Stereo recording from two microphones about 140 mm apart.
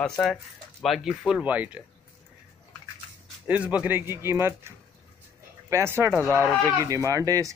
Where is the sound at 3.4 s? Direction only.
10° right (ahead or behind).